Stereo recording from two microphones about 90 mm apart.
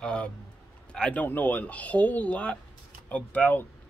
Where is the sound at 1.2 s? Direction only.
20° left (ahead or behind).